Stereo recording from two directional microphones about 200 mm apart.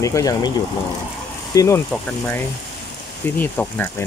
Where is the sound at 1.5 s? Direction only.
15° left (ahead or behind).